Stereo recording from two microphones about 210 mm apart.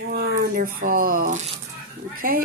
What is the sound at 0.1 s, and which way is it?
A woman's voice, 45° right (ahead or behind).